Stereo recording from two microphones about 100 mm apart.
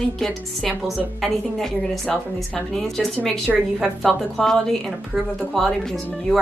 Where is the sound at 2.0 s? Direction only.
15° left (ahead or behind).